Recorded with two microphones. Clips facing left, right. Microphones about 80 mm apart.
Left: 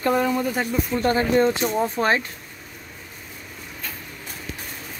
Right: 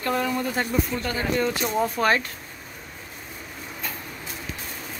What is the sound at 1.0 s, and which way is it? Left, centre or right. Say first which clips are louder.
Speech: left 6 dB; left.